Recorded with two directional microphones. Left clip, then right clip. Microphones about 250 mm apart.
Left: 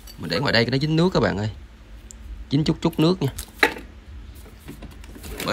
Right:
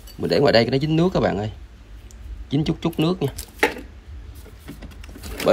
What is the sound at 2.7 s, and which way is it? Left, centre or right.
Speech, left.